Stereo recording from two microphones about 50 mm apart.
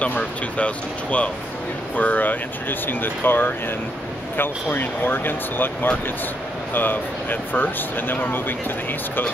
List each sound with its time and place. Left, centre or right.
0.2 s speech: left